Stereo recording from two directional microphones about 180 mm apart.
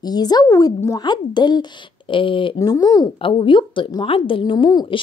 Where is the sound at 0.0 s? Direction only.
20° left (ahead or behind).